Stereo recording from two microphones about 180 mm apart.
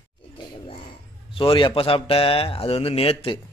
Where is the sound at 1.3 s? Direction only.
30° left (ahead or behind).